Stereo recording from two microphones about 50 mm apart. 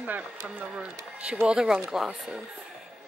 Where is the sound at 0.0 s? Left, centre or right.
Right.